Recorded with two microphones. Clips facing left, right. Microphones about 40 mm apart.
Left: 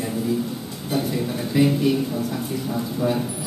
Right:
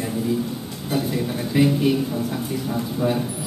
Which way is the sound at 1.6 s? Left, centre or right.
Right.